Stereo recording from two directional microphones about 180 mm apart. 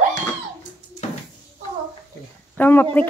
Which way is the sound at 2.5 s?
10° left (ahead or behind).